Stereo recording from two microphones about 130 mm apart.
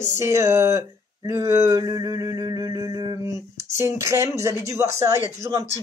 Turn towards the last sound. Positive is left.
turn(degrees=-25)  # may be behind; listen again after turning